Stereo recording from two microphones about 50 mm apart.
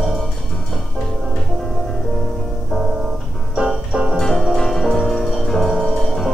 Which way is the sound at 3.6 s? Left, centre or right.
Right.